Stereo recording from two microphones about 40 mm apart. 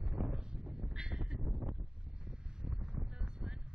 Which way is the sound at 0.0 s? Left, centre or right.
Centre.